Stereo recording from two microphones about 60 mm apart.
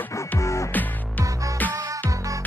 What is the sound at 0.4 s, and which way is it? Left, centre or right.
Music, left.